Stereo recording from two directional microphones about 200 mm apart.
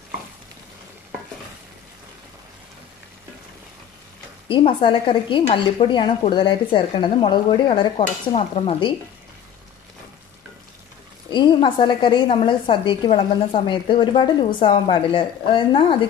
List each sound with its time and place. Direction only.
4.5 s a woman's voice: 25° left (ahead or behind)
11.2 s a woman's voice: 25° left (ahead or behind)